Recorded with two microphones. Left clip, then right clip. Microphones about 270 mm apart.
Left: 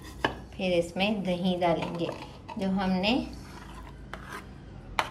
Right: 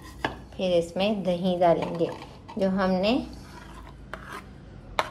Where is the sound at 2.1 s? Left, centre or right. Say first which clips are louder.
Even; centre.